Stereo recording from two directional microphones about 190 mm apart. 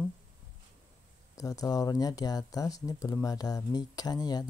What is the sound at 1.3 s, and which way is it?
Speech, 20° left (ahead or behind).